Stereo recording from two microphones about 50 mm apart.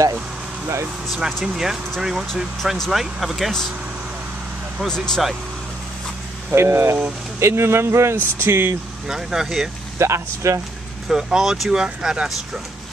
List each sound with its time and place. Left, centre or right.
1.1 s speech: centre
4.8 s speech: centre
6.5 s speech: right
9.0 s speech: centre
9.9 s speech: right
11.1 s speech: centre